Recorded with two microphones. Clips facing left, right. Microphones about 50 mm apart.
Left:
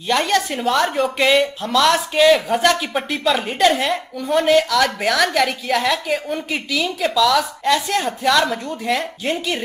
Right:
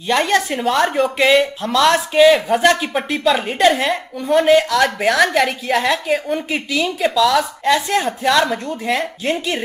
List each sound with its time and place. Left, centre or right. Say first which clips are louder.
0.1 s speech: right 2 dB; centre